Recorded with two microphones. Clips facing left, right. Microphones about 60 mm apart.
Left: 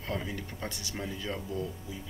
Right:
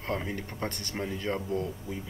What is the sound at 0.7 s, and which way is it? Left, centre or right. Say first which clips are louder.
Speech: right 2 dB; right.